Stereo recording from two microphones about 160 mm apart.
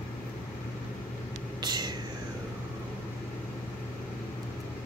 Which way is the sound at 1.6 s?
25° right (ahead or behind).